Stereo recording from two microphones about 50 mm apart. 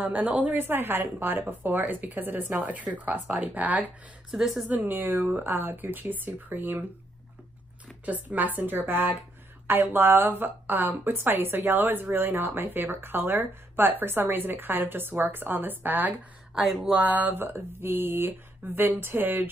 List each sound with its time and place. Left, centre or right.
0.2 s a woman's voice: right
0.6 s a woman's voice: right
4.3 s speech: centre
4.6 s speech: right
8.0 s a woman's voice: right